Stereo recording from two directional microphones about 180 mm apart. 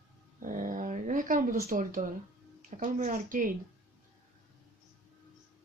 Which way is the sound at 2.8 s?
45° right (ahead or behind).